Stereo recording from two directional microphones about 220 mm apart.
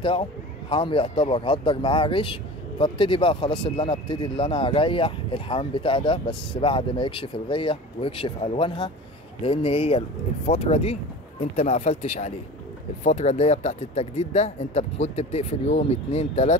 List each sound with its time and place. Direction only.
0.7 s speech: 25° left (ahead or behind)